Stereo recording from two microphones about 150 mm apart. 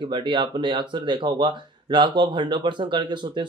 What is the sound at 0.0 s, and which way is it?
Speech, 30° right (ahead or behind).